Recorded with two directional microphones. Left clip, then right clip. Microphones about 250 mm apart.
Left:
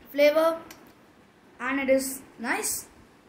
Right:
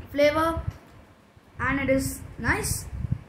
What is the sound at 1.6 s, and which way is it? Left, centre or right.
A woman's voice, centre.